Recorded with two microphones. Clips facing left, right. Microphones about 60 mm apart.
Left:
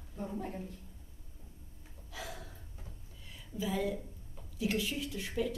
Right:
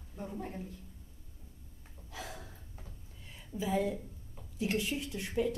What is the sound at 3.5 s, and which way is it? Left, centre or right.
A woman's voice, right.